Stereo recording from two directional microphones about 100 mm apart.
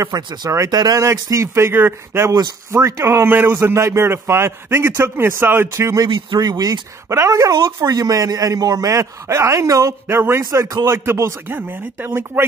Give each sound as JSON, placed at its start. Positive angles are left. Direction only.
{"t": 0.0, "sound": "a man's voice", "side_deg": -40}
{"t": 6.0, "sound": "speech", "side_deg": -50}
{"t": 7.1, "sound": "a man's voice", "side_deg": -30}